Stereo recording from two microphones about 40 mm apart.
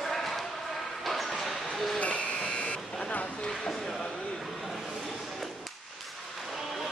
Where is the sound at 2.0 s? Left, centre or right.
Left.